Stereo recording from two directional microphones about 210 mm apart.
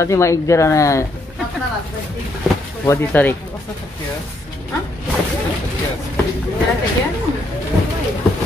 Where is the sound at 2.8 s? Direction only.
10° left (ahead or behind).